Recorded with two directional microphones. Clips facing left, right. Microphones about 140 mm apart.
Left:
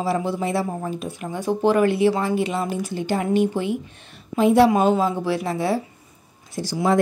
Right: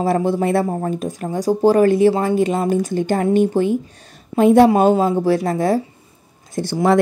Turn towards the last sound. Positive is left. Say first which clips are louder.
# right 5 dB
turn(degrees=-60)  # may be behind; listen again after turning